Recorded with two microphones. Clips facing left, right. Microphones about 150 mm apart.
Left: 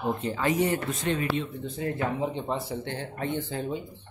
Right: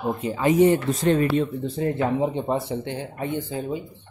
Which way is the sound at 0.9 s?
40° right (ahead or behind).